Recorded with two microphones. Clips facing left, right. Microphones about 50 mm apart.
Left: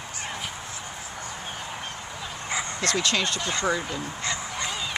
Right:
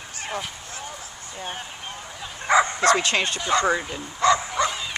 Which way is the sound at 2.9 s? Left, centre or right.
Right.